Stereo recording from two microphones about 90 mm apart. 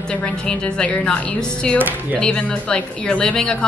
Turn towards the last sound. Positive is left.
turn(degrees=10)  # may be behind; listen again after turning